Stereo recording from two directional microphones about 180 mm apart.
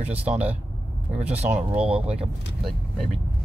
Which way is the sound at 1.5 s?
5° right (ahead or behind).